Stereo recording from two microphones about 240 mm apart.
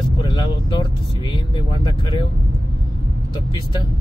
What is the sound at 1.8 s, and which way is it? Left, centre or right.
Speech, centre.